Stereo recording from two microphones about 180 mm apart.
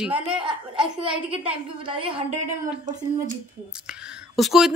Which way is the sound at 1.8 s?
30° right (ahead or behind).